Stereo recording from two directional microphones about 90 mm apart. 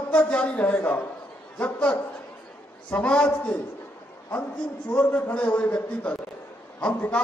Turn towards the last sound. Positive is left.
turn(degrees=15)  # may be behind; listen again after turning